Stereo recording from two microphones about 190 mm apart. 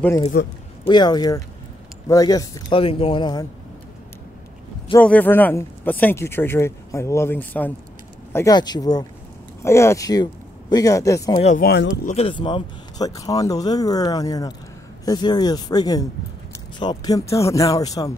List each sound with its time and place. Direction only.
0.0 s speech: 15° left (ahead or behind)
4.9 s speech: 10° left (ahead or behind)
11.4 s speech: 45° left (ahead or behind)
12.1 s speech: 30° left (ahead or behind)